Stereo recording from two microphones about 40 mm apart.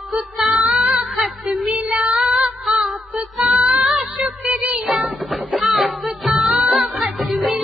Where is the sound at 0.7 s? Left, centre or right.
Centre.